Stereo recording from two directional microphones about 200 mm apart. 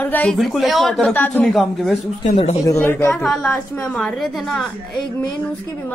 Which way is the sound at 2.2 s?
35° left (ahead or behind).